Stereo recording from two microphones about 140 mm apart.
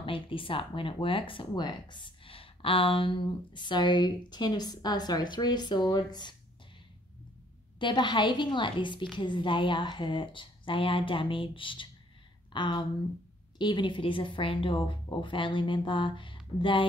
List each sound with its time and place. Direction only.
0.0 s speech: 40° left (ahead or behind)
7.8 s speech: 35° left (ahead or behind)